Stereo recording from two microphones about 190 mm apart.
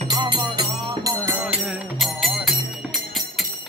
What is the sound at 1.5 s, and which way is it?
Music, centre (ahead or behind).